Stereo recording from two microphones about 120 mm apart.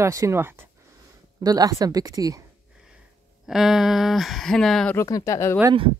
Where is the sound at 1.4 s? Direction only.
35° right (ahead or behind).